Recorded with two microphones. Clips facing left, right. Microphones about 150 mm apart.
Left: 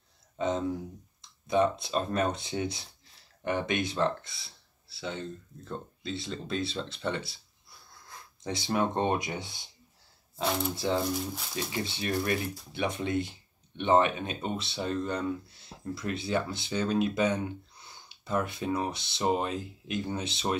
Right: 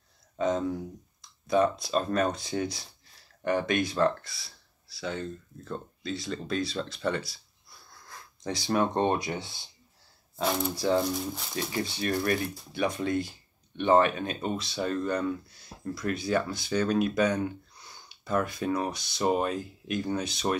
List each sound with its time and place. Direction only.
0.4 s speech: 20° left (ahead or behind)
8.5 s speech: 20° left (ahead or behind)
10.4 s speech: centre (ahead or behind)
11.7 s speech: 25° left (ahead or behind)